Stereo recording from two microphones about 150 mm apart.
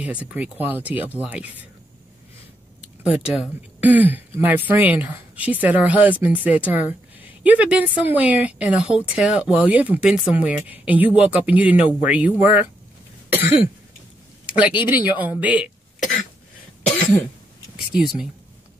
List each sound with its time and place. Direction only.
0.0 s speech: 10° right (ahead or behind)
3.0 s speech: 5° right (ahead or behind)
13.3 s cough: 10° right (ahead or behind)
14.4 s a sound: 10° right (ahead or behind)
14.9 s speech: 15° right (ahead or behind)
18.0 s speech: 5° right (ahead or behind)